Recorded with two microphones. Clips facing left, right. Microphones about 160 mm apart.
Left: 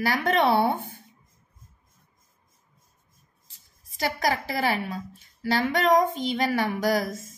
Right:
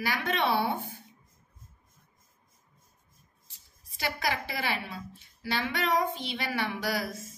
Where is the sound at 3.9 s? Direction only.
45° left (ahead or behind).